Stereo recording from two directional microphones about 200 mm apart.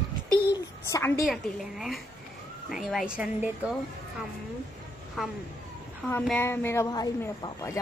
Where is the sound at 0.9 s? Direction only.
15° left (ahead or behind).